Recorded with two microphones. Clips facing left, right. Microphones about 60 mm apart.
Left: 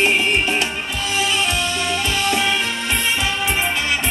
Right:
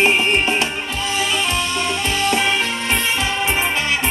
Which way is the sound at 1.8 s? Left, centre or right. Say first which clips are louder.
Right 1 dB; right.